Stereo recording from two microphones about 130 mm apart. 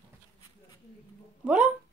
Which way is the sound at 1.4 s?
10° right (ahead or behind).